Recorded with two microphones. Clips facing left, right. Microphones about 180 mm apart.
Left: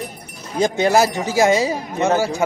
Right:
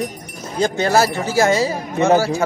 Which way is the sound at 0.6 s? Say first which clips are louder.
Left 1 dB; 15° left (ahead or behind).